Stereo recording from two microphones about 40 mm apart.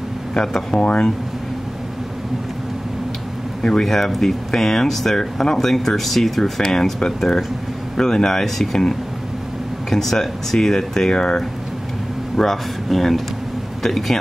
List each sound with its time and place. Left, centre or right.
0.3 s speech: centre
0.7 s speech: left
3.8 s speech: centre
12.4 s speech: centre